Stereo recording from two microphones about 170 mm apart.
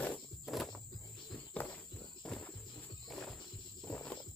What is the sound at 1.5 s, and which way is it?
Walk, 5° left (ahead or behind).